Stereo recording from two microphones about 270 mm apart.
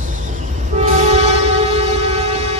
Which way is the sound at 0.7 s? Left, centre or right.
Right.